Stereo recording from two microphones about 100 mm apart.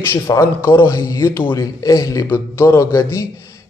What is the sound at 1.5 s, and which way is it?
Speech, 35° left (ahead or behind).